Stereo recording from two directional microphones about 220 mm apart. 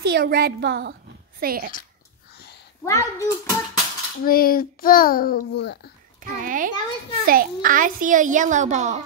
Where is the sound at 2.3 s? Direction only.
50° left (ahead or behind).